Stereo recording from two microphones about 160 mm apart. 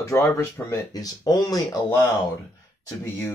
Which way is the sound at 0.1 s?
20° left (ahead or behind).